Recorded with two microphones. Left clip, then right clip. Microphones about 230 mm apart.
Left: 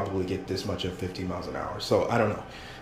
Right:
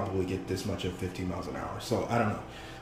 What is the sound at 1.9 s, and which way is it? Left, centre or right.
Speech, centre.